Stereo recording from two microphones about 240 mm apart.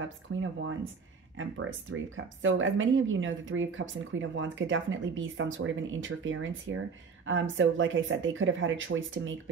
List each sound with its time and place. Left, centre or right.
1.3 s speech: right